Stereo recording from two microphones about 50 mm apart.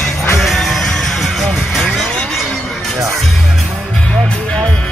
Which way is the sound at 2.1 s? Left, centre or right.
Centre.